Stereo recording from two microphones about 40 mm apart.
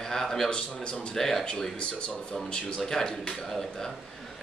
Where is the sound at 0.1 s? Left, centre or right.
Centre.